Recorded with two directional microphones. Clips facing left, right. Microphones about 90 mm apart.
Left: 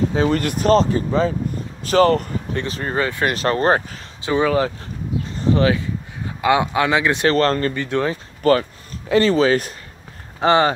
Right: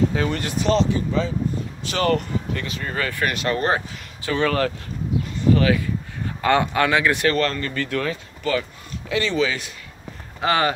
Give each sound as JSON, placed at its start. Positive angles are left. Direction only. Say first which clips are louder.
{"t": 0.3, "sound": "speech", "louder": "left 5 dB", "side_deg": 50}
{"t": 3.3, "sound": "speech", "louder": "left 6 dB", "side_deg": 35}
{"t": 4.2, "sound": "speech", "louder": "left 3 dB", "side_deg": 20}
{"t": 6.4, "sound": "speech", "louder": "left 2 dB", "side_deg": 15}
{"t": 7.3, "sound": "speech", "louder": "left 5 dB", "side_deg": 40}
{"t": 7.7, "sound": "speech", "louder": "left 3 dB", "side_deg": 20}
{"t": 8.4, "sound": "speech", "louder": "left 9 dB", "side_deg": 45}
{"t": 10.4, "sound": "speech", "louder": "left 5 dB", "side_deg": 25}